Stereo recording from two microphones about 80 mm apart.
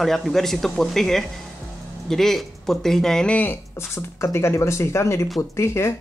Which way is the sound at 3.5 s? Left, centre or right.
Left.